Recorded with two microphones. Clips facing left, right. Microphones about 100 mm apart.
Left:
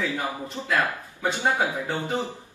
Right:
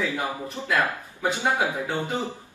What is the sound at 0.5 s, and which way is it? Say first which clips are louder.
Speech: even; 20° right (ahead or behind).